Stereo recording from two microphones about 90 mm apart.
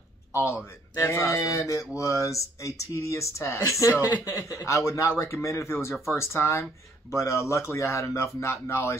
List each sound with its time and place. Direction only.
0.9 s speech: 30° left (ahead or behind)